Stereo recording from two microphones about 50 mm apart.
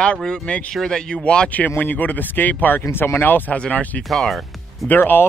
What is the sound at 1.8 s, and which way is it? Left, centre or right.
Speech, left.